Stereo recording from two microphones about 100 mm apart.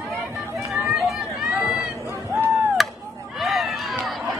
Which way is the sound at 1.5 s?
20° right (ahead or behind).